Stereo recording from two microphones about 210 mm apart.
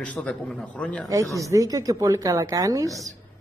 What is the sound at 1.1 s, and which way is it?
Speech, 15° right (ahead or behind).